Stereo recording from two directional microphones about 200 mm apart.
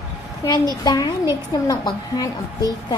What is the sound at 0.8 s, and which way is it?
A child's voice, 20° left (ahead or behind).